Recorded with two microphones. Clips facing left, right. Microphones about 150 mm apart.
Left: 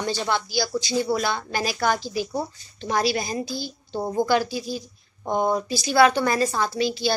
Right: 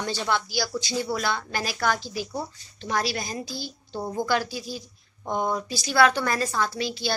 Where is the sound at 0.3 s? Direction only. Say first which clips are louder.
Left 1 dB; 5° right (ahead or behind).